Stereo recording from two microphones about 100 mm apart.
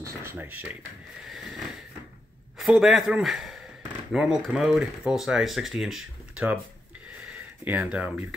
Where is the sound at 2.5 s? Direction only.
Centre (ahead or behind).